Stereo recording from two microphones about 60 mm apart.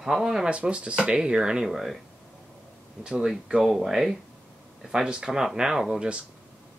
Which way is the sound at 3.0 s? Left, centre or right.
Centre.